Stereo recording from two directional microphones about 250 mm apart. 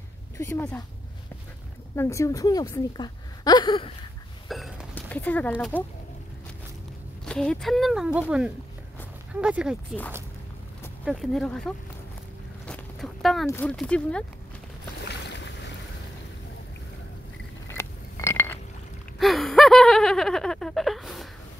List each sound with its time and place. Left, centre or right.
0.4 s a woman's voice: centre
2.0 s a woman's voice: centre
4.5 s hiccup: centre
5.5 s speech: centre
7.2 s speech: centre
11.1 s speech: centre
12.6 s a sound: centre
13.5 s speech: centre
15.0 s boat: left
17.6 s a sound: centre